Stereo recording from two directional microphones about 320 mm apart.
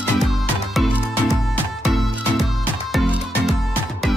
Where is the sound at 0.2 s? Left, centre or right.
Centre.